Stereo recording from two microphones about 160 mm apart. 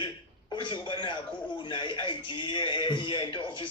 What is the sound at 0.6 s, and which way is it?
A man's voice, 30° left (ahead or behind).